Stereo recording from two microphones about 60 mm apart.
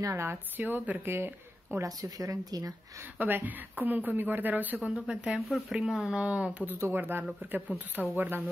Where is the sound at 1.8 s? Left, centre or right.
Right.